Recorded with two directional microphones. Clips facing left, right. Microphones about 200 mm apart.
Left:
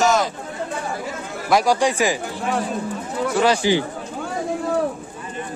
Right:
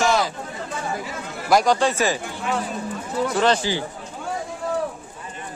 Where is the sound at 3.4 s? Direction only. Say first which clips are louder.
Left 5 dB; 15° left (ahead or behind).